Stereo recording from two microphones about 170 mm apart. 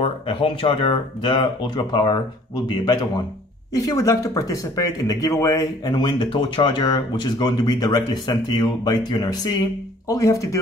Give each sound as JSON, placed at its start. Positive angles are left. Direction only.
{"t": 0.0, "sound": "speech", "side_deg": 30}